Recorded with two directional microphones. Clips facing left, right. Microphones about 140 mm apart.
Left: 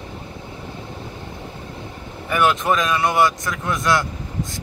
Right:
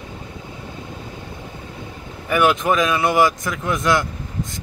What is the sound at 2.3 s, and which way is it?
Speech, 5° right (ahead or behind).